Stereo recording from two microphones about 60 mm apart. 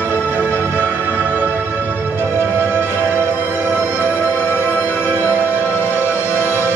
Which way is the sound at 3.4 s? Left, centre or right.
Left.